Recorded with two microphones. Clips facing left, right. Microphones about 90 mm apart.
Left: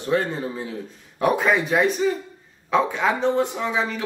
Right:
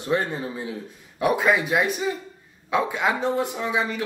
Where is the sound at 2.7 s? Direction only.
5° right (ahead or behind).